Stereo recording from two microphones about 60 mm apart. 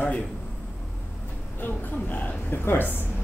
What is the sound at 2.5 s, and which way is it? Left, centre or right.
Speech, left.